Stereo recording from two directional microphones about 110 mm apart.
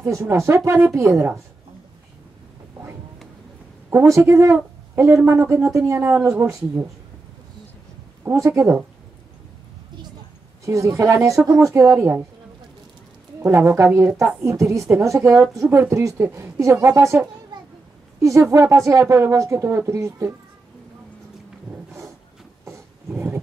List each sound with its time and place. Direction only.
0.0 s a woman's voice: 25° right (ahead or behind)
3.9 s a woman's voice: 25° right (ahead or behind)
8.2 s a woman's voice: 20° right (ahead or behind)
10.6 s a woman's voice: 30° right (ahead or behind)
13.4 s a woman's voice: 20° right (ahead or behind)
18.2 s a woman's voice: 30° right (ahead or behind)
22.7 s a sound: 25° right (ahead or behind)